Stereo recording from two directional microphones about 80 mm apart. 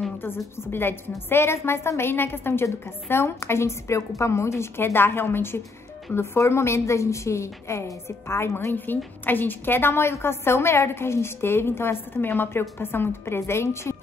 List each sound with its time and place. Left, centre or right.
0.2 s a woman's voice: left